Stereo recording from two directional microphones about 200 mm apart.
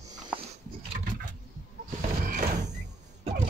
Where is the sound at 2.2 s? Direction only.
45° right (ahead or behind).